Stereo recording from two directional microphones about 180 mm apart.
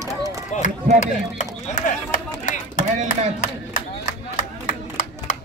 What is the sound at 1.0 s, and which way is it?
Chop, 45° left (ahead or behind).